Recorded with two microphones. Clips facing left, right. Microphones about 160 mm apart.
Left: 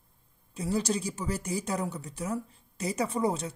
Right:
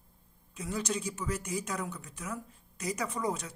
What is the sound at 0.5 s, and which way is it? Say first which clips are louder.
Speech: left 5 dB; 35° left (ahead or behind).